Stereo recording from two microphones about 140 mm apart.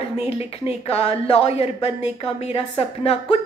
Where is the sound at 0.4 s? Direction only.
45° left (ahead or behind).